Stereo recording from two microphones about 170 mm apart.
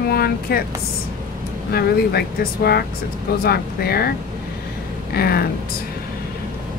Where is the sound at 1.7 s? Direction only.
65° left (ahead or behind).